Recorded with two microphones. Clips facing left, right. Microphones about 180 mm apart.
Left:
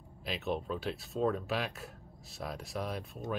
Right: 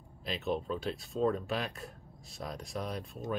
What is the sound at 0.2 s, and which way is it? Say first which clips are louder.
Speech: right 1 dB; centre (ahead or behind).